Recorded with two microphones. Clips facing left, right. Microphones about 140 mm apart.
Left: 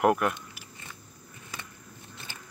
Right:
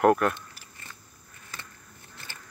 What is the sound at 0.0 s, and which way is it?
Speech, 15° left (ahead or behind).